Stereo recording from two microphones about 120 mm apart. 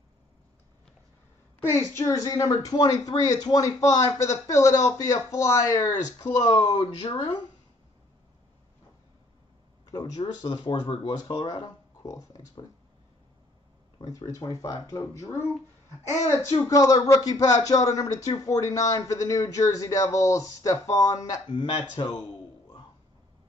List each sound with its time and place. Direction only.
1.6 s a woman's voice: 20° left (ahead or behind); by 7.4 s 40° left (ahead or behind)
9.8 s speech: 30° left (ahead or behind)
12.0 s a woman's voice: 25° left (ahead or behind)
13.9 s a woman's voice: 30° left (ahead or behind)
21.5 s speech: 40° left (ahead or behind)